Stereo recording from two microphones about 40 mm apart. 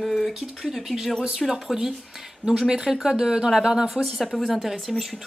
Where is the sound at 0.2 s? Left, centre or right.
Centre.